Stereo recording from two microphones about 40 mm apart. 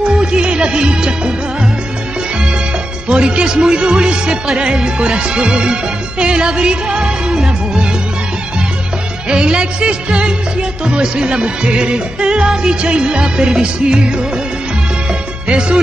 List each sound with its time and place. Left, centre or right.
0.2 s music: right
3.1 s music: right
9.3 s music: right
12.4 s music: centre
12.8 s music: right
15.4 s music: centre